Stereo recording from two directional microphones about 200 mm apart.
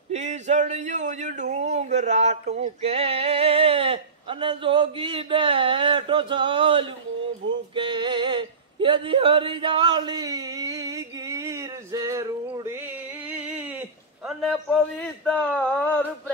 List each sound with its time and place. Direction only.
0.1 s speech: 35° right (ahead or behind)
2.5 s a sound: 30° right (ahead or behind)
7.7 s male singing: 25° right (ahead or behind); by 16.1 s 10° left (ahead or behind)